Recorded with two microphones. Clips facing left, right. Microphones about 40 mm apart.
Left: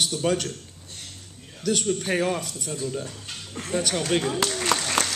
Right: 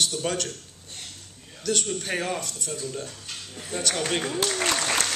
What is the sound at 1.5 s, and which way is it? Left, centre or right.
Speech, centre.